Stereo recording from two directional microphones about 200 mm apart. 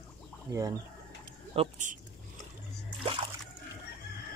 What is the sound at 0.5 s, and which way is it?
Speech, 15° right (ahead or behind).